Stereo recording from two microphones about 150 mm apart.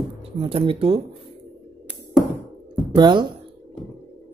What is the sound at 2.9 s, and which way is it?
Speech, 30° right (ahead or behind).